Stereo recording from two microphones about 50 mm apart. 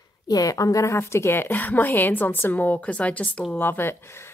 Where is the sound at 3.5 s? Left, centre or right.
Left.